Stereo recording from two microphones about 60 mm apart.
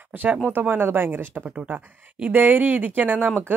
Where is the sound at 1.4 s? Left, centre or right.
Right.